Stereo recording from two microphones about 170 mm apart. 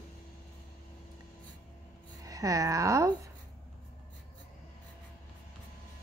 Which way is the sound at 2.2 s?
20° right (ahead or behind).